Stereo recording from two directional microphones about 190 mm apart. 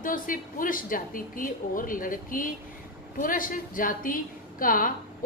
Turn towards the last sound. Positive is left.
turn(degrees=45)  # may be behind; listen again after turning